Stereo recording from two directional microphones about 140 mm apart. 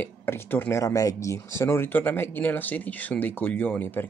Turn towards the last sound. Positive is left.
turn(degrees=15)  # may be behind; listen again after turning